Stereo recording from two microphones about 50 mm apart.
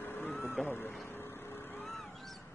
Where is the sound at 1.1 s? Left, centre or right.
Left.